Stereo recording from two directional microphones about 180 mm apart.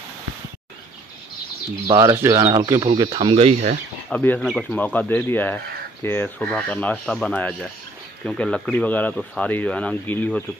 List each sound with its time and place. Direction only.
1.9 s speech: 25° right (ahead or behind)
4.1 s speech: 10° left (ahead or behind)